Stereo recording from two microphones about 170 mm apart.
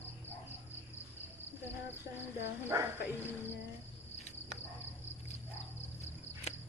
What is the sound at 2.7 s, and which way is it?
Speech, 15° right (ahead or behind).